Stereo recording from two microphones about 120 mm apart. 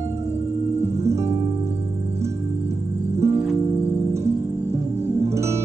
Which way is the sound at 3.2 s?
25° right (ahead or behind).